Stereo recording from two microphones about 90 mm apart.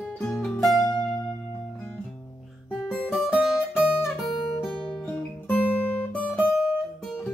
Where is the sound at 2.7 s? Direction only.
15° left (ahead or behind).